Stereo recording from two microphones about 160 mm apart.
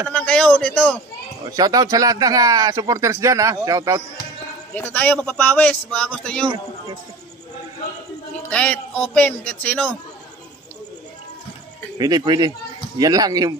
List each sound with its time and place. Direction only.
0.1 s a man's voice: 10° left (ahead or behind)
1.5 s speech: 25° right (ahead or behind)
4.7 s speech: 10° left (ahead or behind)
8.4 s speech: 10° left (ahead or behind)
12.0 s speech: 25° right (ahead or behind)